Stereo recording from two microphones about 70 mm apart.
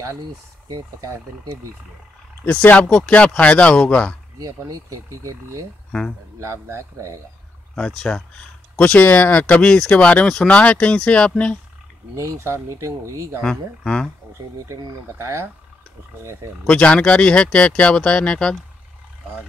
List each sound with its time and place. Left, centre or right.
0.7 s speech: right
2.4 s speech: left
4.4 s speech: right
5.9 s speech: centre
6.4 s speech: right
7.7 s speech: centre
12.2 s speech: right
13.4 s speech: centre
15.1 s speech: right
16.6 s speech: centre